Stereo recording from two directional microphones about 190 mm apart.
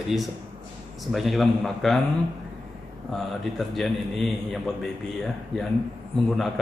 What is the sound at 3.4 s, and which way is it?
Speech, centre (ahead or behind).